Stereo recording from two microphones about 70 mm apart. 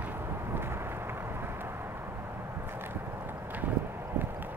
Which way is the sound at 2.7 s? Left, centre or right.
Right.